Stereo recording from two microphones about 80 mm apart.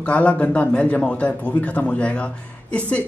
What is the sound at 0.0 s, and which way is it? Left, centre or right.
A man's voice, centre.